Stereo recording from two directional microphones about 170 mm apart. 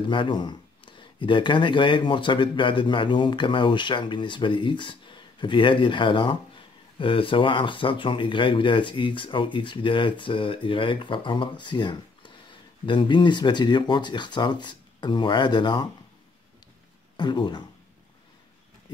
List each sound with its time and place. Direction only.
0.0 s speech: 30° left (ahead or behind)
17.2 s speech: 25° left (ahead or behind)